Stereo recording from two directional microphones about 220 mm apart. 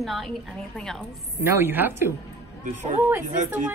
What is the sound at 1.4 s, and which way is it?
Speech, 10° right (ahead or behind).